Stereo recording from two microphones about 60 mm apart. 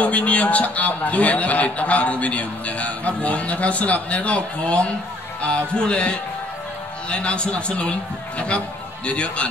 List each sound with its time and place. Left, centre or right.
0.0 s a man's voice: left